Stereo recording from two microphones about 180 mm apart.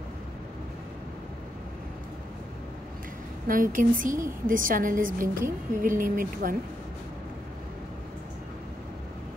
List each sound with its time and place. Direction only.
3.4 s a woman's voice: 50° right (ahead or behind)